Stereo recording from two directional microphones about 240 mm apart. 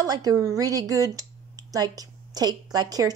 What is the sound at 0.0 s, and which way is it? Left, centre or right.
Speech, centre.